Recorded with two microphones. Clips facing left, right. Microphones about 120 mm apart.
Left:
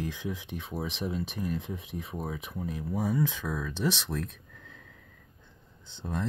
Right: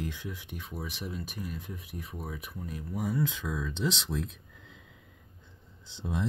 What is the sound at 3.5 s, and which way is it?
Speech, centre (ahead or behind).